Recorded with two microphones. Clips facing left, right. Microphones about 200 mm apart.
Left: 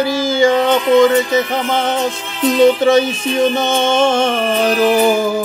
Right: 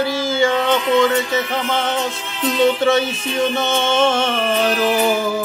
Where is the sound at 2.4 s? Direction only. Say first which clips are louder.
Left 5 dB; 45° left (ahead or behind).